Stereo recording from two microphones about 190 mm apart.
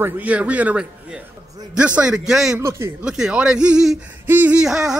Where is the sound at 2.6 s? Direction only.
15° right (ahead or behind).